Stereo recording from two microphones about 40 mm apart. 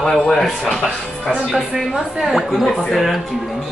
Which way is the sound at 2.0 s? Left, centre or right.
Centre.